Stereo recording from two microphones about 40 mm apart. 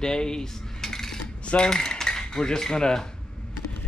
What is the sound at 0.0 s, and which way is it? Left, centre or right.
Cutlery, centre.